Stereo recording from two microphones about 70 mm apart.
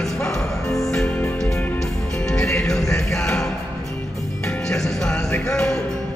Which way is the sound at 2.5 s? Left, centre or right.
Centre.